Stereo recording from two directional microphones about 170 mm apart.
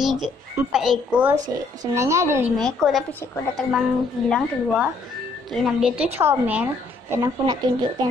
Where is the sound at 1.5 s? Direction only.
20° right (ahead or behind).